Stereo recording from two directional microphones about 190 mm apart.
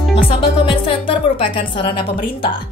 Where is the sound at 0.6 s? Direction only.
25° left (ahead or behind).